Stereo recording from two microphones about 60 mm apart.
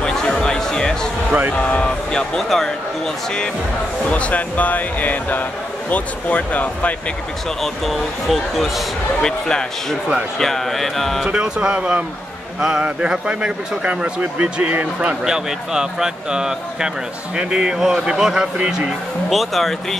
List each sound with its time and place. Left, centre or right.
0.0 s music: centre
1.5 s speech: centre
4.1 s speech: left
7.6 s speech: centre
9.2 s speech: centre
11.2 s a man's voice: centre
15.2 s speech: centre
19.2 s speech: centre